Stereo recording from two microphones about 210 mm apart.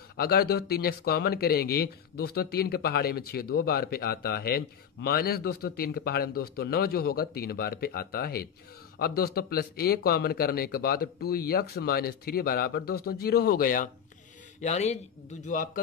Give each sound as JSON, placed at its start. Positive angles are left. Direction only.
{"t": 0.2, "sound": "speech", "side_deg": 50}